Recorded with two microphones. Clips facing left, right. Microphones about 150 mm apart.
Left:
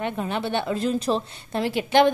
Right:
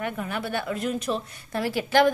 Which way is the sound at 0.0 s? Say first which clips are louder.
Left 3 dB; 25° left (ahead or behind).